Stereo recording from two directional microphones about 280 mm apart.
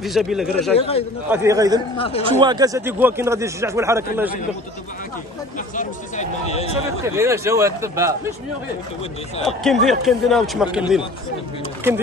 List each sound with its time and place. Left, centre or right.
0.0 s a man's voice: centre
0.7 s speech: left
1.3 s a man's voice: centre
2.0 s speech: centre
2.4 s a man's voice: centre
5.8 s speech: left
7.2 s a man's voice: centre
9.4 s a man's voice: centre